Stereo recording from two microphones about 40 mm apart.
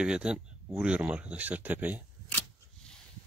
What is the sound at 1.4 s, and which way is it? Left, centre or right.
Speech, right.